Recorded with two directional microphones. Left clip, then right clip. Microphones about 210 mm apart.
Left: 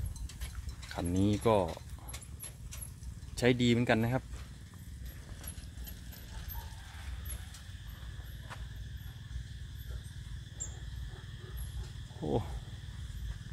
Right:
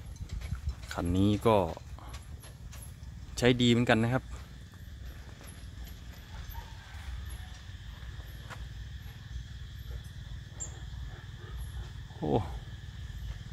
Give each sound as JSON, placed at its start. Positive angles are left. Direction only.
{"t": 0.8, "sound": "speech", "side_deg": -15}
{"t": 3.3, "sound": "speech", "side_deg": -15}
{"t": 12.2, "sound": "a sound", "side_deg": -20}